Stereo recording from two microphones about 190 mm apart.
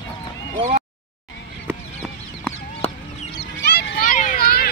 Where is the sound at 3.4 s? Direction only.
60° left (ahead or behind).